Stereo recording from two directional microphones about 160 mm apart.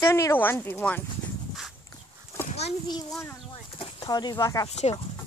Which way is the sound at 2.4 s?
40° left (ahead or behind).